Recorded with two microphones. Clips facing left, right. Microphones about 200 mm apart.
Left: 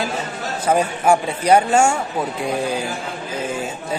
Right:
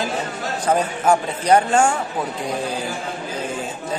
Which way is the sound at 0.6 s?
10° left (ahead or behind).